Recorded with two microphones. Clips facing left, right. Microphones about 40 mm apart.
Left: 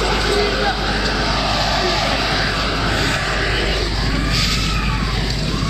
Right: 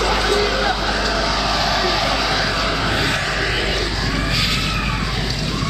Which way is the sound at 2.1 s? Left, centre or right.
Centre.